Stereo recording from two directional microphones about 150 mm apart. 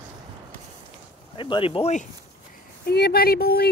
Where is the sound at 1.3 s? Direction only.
35° left (ahead or behind).